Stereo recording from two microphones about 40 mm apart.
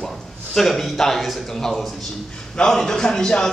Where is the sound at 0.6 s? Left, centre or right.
Centre.